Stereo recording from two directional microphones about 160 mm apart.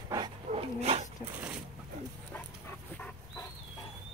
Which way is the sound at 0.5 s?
45° right (ahead or behind).